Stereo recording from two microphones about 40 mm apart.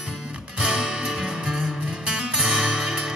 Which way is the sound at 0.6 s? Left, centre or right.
Right.